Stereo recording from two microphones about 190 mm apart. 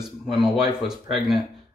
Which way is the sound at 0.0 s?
Centre (ahead or behind).